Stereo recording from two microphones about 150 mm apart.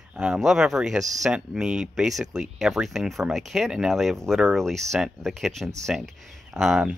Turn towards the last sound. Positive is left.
turn(degrees=-5)  # may be behind; listen again after turning